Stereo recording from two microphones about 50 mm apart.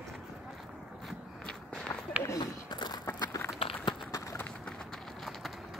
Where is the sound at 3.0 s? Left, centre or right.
Left.